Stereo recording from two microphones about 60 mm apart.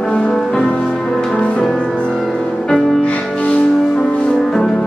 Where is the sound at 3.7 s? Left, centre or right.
Centre.